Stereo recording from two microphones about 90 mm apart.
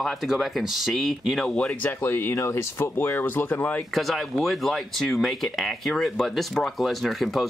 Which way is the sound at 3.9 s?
Centre (ahead or behind).